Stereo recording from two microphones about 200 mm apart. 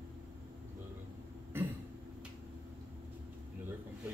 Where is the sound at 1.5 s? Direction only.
10° right (ahead or behind).